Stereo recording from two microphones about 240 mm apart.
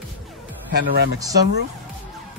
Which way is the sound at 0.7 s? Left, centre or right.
Right.